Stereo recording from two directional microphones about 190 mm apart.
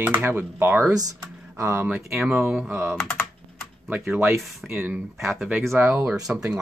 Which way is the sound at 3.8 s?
10° right (ahead or behind).